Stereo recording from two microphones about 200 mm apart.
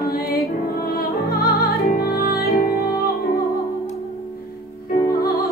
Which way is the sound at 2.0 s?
50° left (ahead or behind).